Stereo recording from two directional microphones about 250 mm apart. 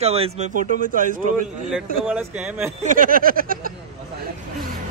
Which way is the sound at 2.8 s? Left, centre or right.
Right.